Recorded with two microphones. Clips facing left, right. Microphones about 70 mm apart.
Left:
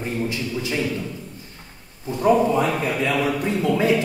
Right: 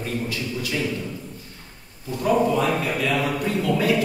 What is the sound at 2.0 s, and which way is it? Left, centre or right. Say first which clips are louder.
A man's voice: left 3 dB; left.